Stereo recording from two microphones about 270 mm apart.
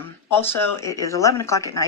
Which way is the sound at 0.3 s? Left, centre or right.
Centre.